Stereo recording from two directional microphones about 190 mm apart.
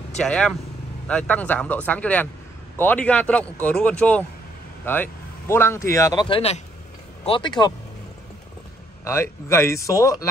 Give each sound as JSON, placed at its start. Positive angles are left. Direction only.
{"t": 0.2, "sound": "speech", "side_deg": 5}
{"t": 9.0, "sound": "speech", "side_deg": 15}